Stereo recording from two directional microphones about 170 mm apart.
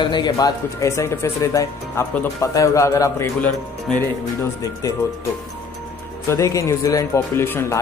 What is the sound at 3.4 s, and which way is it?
Speech, 5° left (ahead or behind).